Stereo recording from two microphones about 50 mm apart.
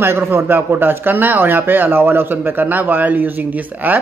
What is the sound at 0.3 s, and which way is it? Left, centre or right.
Speech, right.